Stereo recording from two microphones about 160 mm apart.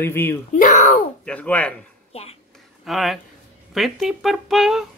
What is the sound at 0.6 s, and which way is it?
Speech, 50° left (ahead or behind).